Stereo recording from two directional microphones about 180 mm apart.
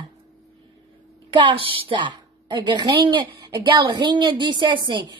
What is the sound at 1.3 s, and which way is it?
A woman's voice, 25° right (ahead or behind).